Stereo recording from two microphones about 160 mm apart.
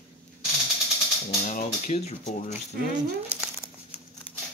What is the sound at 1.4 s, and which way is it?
Speech, 45° left (ahead or behind).